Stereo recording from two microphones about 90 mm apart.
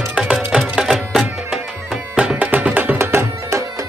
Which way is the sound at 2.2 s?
15° right (ahead or behind).